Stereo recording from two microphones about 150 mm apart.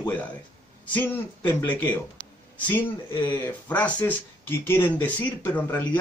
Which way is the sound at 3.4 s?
10° left (ahead or behind).